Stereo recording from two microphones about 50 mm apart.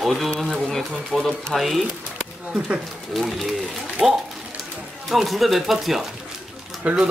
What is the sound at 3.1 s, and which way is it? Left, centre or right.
Speech, centre.